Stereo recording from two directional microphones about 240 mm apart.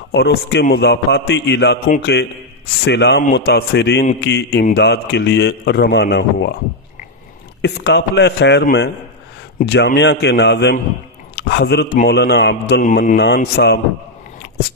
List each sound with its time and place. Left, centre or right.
0.1 s a man's voice: left
7.6 s a man's voice: left